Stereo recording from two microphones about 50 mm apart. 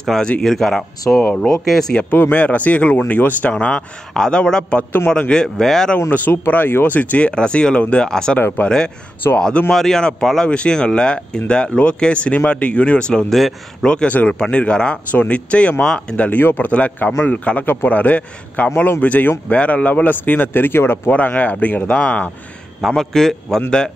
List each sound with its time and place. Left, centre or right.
0.0 s speech: centre
1.3 s speech: centre
2.0 s speech: left
3.5 s speech: left
4.1 s speech: centre
6.0 s speech: left
7.0 s speech: left
13.3 s speech: centre
13.8 s speech: centre
15.8 s speech: centre
16.2 s speech: left
21.1 s speech: left
22.9 s speech: centre